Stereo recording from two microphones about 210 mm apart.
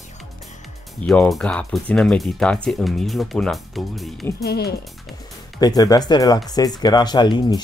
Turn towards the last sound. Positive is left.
turn(degrees=20)  # may be behind; listen again after turning